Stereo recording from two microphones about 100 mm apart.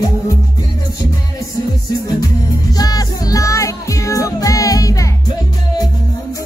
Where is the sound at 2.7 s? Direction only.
40° left (ahead or behind).